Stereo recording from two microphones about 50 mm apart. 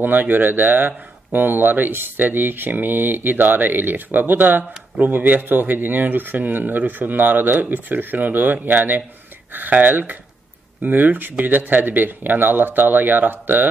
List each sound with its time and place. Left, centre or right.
0.0 s speech: right